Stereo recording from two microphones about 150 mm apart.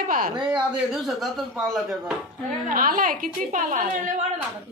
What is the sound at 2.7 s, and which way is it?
A woman's voice, 65° right (ahead or behind).